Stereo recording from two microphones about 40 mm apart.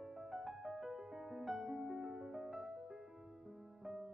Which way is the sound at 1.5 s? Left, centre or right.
Centre.